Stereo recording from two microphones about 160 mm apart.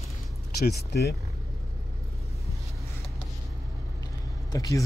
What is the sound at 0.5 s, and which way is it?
Speech, 90° left.